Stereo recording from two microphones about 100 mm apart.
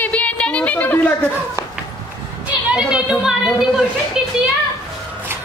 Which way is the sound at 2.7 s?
10° right (ahead or behind).